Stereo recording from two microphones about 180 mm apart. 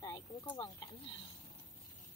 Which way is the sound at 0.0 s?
20° left (ahead or behind).